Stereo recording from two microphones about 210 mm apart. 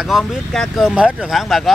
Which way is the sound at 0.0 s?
Centre (ahead or behind).